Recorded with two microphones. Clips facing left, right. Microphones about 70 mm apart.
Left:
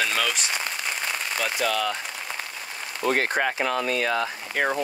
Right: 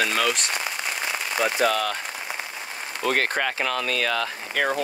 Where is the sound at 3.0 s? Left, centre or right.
Right.